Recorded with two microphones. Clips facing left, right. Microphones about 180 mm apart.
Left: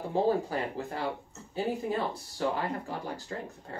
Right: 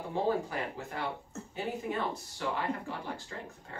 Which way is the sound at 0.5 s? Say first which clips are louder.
Left 4 dB; 35° left (ahead or behind).